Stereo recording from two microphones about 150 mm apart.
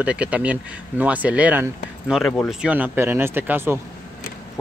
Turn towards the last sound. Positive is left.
turn(degrees=-15)  # may be behind; listen again after turning